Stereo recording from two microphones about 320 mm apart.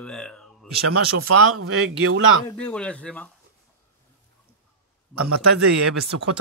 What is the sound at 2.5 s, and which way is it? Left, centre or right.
Speech, centre.